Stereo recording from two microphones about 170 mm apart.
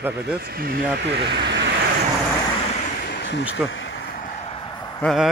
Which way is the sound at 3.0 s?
75° left (ahead or behind).